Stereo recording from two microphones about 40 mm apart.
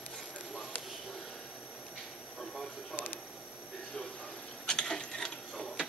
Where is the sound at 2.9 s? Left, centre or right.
Left.